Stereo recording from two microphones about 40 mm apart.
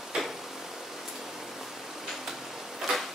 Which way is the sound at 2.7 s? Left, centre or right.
Centre.